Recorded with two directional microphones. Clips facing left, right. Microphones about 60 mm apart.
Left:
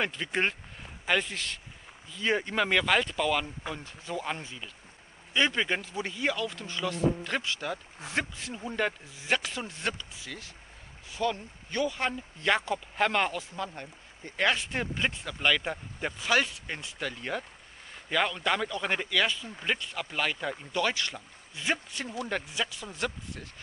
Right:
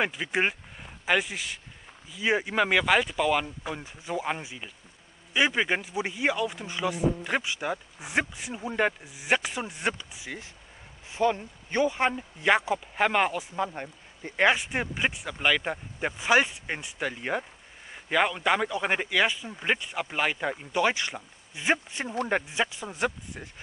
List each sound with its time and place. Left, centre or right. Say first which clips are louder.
0.0 s speech: right 3 dB; centre